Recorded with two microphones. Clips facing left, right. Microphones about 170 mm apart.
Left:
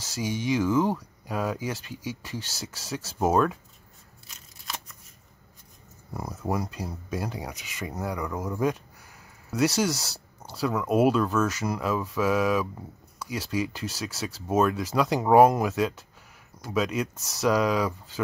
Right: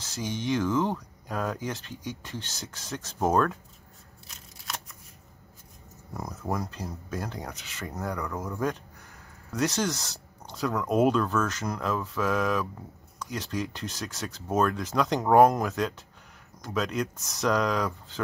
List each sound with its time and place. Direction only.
0.0 s speech: 10° left (ahead or behind)
4.3 s scissors: centre (ahead or behind)
6.1 s speech: 10° left (ahead or behind)
9.8 s speech: 10° left (ahead or behind)